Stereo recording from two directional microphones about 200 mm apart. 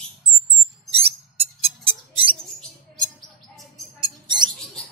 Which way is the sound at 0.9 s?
30° right (ahead or behind).